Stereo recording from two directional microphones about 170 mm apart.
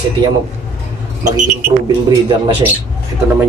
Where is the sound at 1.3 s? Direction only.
45° right (ahead or behind).